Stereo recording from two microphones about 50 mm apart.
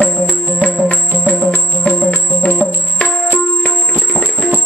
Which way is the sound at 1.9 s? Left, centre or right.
Left.